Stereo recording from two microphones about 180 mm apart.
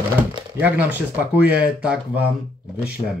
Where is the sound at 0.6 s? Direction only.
10° right (ahead or behind).